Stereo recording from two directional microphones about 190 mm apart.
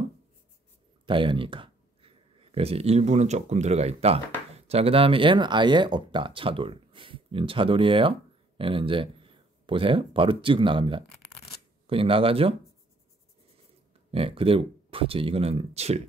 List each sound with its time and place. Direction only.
1.0 s speech: 25° right (ahead or behind)
14.1 s speech: 30° right (ahead or behind)